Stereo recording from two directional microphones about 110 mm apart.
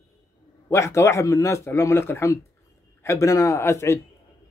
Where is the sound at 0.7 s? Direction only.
25° left (ahead or behind).